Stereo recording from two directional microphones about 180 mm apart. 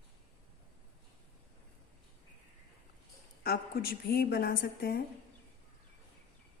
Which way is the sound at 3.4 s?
55° left (ahead or behind).